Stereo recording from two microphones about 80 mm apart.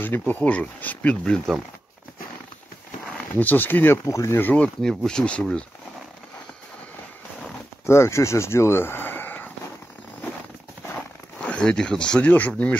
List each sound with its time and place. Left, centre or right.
0.3 s speech: centre
3.3 s speech: left
4.0 s speech: left
4.4 s speech: left
4.8 s speech: centre
7.8 s speech: left
11.4 s speech: centre